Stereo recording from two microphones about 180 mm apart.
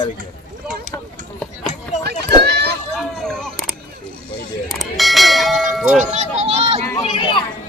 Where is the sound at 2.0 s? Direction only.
65° right (ahead or behind).